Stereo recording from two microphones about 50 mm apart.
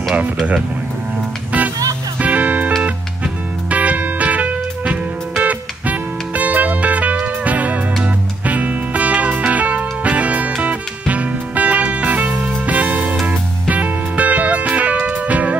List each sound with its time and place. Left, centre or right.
2.1 s music: right
3.7 s music: right